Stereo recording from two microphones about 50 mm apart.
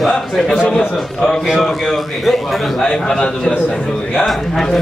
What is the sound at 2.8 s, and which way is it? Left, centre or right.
A man's voice, centre.